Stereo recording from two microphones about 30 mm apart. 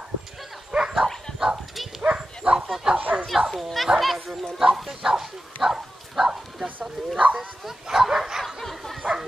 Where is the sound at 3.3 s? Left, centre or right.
Centre.